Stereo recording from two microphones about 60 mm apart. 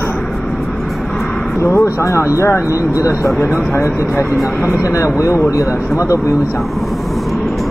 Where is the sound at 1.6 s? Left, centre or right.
Left.